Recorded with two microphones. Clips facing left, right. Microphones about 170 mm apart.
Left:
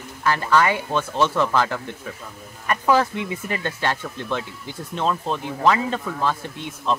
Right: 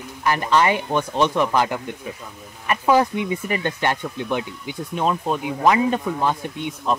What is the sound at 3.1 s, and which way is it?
Speech, centre (ahead or behind).